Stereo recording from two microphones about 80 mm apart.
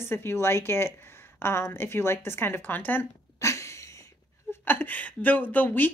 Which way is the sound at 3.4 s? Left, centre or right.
Left.